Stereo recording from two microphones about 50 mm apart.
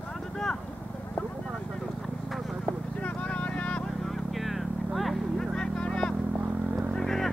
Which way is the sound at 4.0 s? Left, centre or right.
Centre.